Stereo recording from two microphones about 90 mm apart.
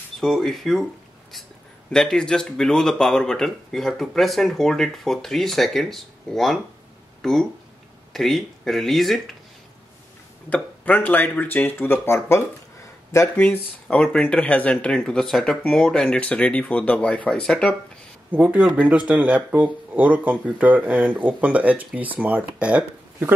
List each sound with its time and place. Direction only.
0.2 s speech: centre (ahead or behind)
1.9 s speech: 5° left (ahead or behind)
10.5 s speech: 15° left (ahead or behind)
13.4 s speech: 15° left (ahead or behind)
18.3 s speech: 15° right (ahead or behind)